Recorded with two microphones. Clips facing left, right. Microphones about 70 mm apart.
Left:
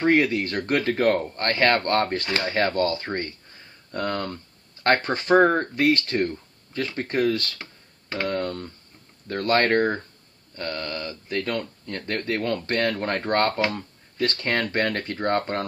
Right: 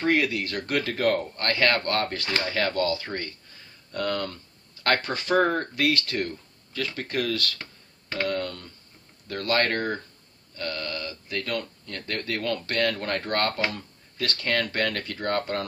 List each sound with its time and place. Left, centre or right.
0.0 s speech: left
8.3 s a sound: left
9.3 s speech: left